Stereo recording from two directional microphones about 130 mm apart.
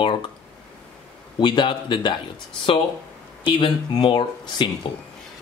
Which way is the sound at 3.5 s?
40° left (ahead or behind).